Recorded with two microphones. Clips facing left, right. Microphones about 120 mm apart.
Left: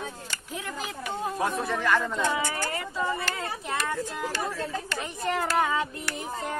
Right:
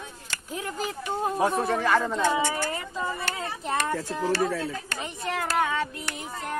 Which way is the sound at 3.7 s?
30° right (ahead or behind).